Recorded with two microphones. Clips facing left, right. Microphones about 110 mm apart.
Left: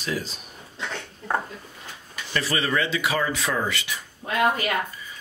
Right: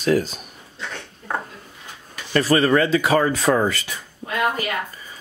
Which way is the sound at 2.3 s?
45° right (ahead or behind).